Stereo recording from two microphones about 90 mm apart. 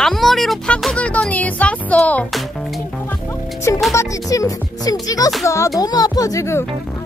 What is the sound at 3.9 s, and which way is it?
Speech, 40° left (ahead or behind).